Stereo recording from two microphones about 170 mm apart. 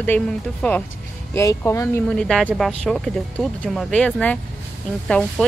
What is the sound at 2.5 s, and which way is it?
Speech, 5° left (ahead or behind).